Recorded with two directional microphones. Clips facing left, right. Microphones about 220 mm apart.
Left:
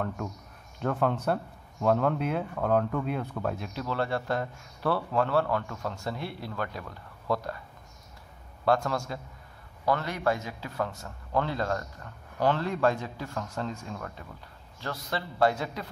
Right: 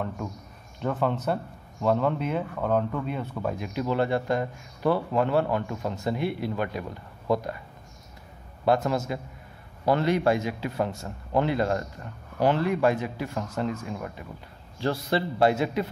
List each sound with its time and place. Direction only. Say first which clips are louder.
0.7 s speech: right 1 dB; centre (ahead or behind); by 7.6 s 20° right (ahead or behind)
8.6 s a man's voice: right 3 dB; 20° right (ahead or behind)
14.8 s a man's voice: right 8 dB; 30° right (ahead or behind)